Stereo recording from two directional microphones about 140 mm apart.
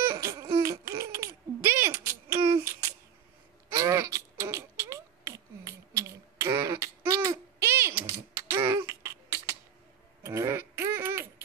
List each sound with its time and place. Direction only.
0.1 s laughter: 20° right (ahead or behind)
0.6 s babbling: 20° right (ahead or behind)
3.7 s a sound: 25° right (ahead or behind)